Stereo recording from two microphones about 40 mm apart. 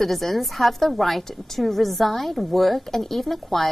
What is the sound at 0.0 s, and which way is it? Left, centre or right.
A woman's voice, centre.